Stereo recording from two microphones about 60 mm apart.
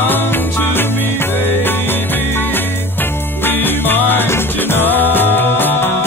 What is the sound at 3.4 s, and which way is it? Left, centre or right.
Music, left.